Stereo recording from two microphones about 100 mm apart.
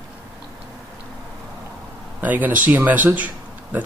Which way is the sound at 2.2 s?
15° right (ahead or behind).